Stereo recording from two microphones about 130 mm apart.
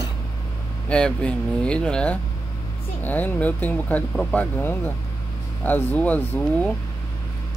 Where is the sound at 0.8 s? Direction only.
10° left (ahead or behind).